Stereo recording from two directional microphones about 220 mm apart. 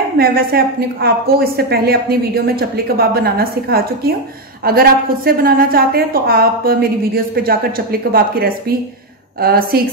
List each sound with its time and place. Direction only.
0.2 s a woman's voice: 45° right (ahead or behind)